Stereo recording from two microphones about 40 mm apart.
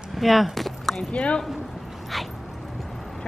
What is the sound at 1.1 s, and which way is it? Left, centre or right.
Speech, left.